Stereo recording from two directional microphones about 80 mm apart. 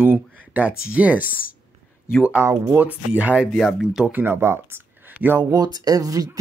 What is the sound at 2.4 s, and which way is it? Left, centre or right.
Speech, right.